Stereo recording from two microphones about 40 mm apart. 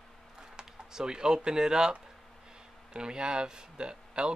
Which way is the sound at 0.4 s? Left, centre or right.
Centre.